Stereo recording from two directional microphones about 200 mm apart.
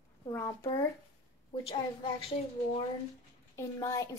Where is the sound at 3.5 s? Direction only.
15° left (ahead or behind).